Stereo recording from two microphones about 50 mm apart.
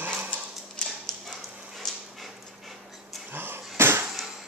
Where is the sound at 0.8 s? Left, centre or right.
Centre.